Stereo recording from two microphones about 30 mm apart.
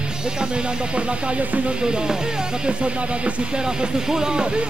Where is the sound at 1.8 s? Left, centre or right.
Right.